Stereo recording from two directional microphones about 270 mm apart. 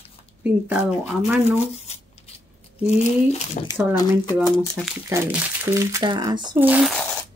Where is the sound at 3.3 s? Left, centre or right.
Left.